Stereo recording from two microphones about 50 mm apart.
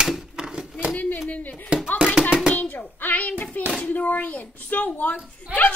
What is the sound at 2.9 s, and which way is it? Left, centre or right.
A woman's voice, left.